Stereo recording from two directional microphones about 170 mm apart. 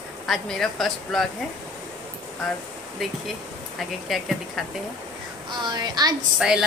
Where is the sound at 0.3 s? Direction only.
Centre (ahead or behind).